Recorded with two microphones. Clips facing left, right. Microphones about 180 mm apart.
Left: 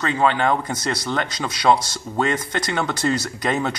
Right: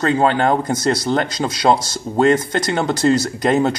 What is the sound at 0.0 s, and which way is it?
Speech, 40° right (ahead or behind).